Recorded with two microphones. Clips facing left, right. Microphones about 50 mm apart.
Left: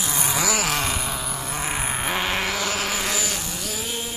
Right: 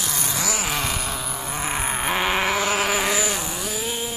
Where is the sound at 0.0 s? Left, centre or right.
Centre.